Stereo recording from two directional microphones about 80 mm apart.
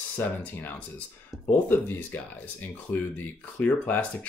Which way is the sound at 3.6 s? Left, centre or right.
Left.